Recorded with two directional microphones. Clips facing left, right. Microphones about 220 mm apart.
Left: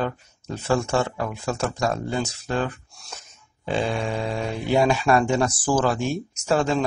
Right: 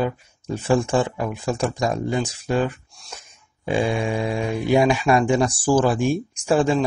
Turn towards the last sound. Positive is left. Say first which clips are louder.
# right 3 dB
turn(degrees=-10)  # may be behind; listen again after turning